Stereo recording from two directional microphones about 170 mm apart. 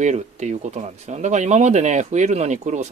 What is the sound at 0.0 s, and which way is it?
Speech, 40° right (ahead or behind).